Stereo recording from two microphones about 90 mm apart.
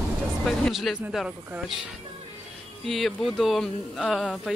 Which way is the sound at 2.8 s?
Centre (ahead or behind).